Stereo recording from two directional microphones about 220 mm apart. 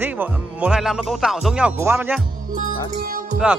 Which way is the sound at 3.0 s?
40° right (ahead or behind).